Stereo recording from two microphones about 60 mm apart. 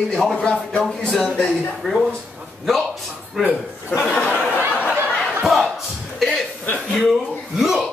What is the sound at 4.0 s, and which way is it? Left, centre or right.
Speech, centre.